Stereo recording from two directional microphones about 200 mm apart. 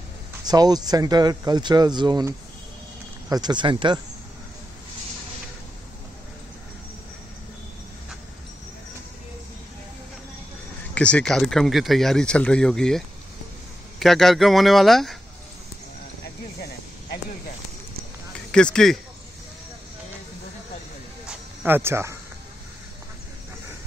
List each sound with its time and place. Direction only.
0.5 s speech: 20° right (ahead or behind)
11.0 s speech: 5° left (ahead or behind)
18.5 s speech: 5° left (ahead or behind)
21.3 s cricket: 10° right (ahead or behind)